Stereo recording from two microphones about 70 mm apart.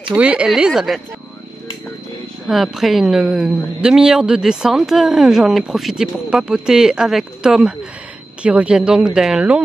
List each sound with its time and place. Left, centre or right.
0.1 s speech: centre
0.6 s speech: centre
2.4 s a woman's voice: centre